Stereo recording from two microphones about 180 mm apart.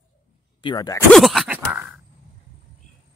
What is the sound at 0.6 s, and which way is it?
Speech, 20° left (ahead or behind).